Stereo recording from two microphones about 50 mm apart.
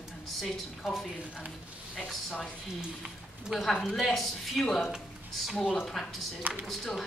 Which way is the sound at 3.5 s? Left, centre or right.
Centre.